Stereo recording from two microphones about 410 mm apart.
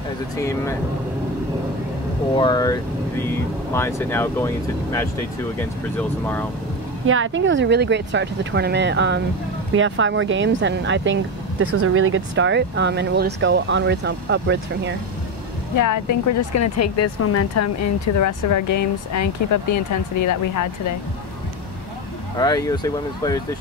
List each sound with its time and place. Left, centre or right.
0.4 s speech: centre
2.3 s speech: centre
5.6 s speech: centre
7.1 s speech: right
15.7 s speech: left
22.4 s speech: centre